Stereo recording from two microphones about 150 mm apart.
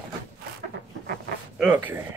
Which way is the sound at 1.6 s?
10° right (ahead or behind).